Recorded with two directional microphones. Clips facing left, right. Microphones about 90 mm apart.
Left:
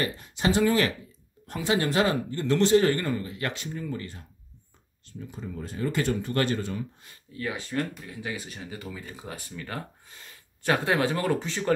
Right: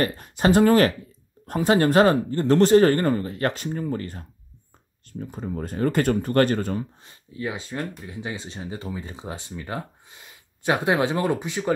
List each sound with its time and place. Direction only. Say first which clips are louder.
0.0 s speech: right 6 dB; 50° right (ahead or behind)
6.8 s speech: right 3 dB; 25° right (ahead or behind)